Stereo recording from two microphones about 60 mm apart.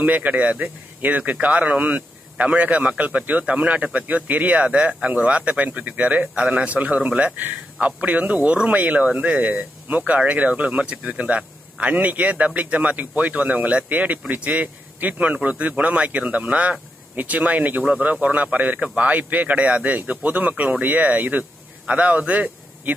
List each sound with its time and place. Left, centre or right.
0.0 s a man's voice: right